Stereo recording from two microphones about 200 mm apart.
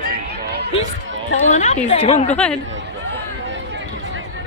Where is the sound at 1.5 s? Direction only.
35° left (ahead or behind).